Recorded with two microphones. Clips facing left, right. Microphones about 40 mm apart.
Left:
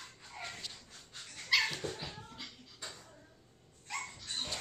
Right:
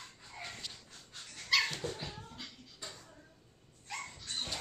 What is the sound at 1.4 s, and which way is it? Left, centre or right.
Dog, centre.